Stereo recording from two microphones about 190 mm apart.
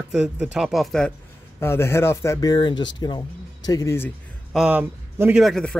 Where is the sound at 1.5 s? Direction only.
15° left (ahead or behind).